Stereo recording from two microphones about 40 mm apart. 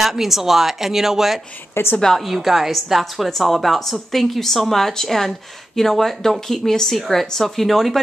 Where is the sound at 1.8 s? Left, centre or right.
Left.